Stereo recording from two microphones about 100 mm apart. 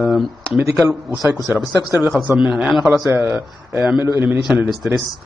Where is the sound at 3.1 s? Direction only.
20° right (ahead or behind).